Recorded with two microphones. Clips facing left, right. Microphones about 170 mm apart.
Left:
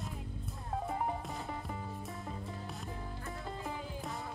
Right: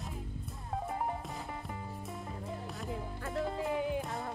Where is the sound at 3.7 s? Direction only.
70° right (ahead or behind).